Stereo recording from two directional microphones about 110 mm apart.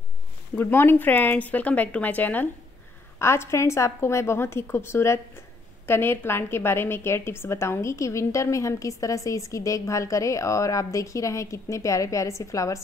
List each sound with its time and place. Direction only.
0.6 s a woman's voice: 20° left (ahead or behind)